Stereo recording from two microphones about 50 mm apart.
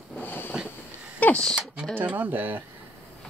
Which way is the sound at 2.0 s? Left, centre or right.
Right.